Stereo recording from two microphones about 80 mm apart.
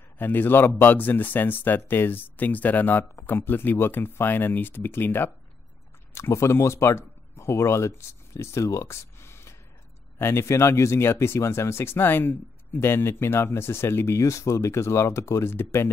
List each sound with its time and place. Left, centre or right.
0.2 s speech: left